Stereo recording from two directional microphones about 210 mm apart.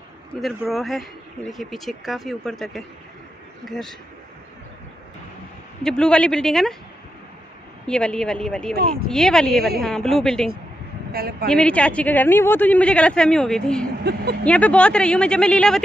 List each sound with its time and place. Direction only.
0.4 s a woman's voice: centre (ahead or behind)
5.9 s a woman's voice: 5° left (ahead or behind)
7.8 s a woman's voice: 5° left (ahead or behind)
11.1 s a woman's voice: 45° right (ahead or behind)
11.4 s a woman's voice: 5° left (ahead or behind)
14.0 s speech: 50° right (ahead or behind)
14.4 s a woman's voice: 5° left (ahead or behind)